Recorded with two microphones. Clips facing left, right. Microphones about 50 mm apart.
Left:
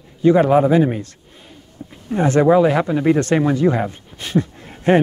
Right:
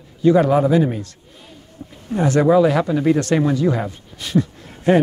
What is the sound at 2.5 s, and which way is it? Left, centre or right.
Speech, left.